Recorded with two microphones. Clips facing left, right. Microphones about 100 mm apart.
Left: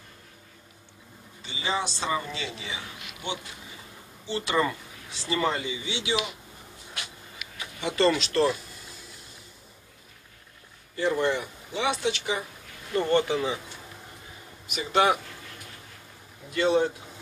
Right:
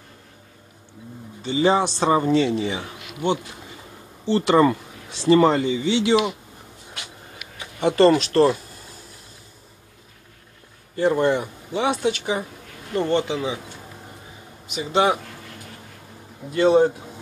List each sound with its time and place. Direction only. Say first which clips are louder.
1.4 s speech: right 11 dB; 55° right (ahead or behind)
7.8 s speech: right 8 dB; 50° right (ahead or behind)
11.0 s speech: right 6 dB; 45° right (ahead or behind)
13.0 s speech: right 2 dB; 20° right (ahead or behind)
14.7 s speech: right 3 dB; 25° right (ahead or behind)
16.5 s speech: right 7 dB; 35° right (ahead or behind)